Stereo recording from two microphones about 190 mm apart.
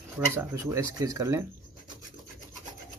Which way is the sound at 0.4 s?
15° right (ahead or behind).